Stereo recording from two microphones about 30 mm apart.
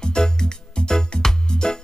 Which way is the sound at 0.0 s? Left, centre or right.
Left.